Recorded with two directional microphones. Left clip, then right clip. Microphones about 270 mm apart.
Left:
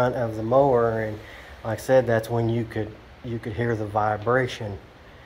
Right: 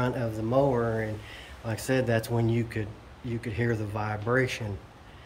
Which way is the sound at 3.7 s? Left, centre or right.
Centre.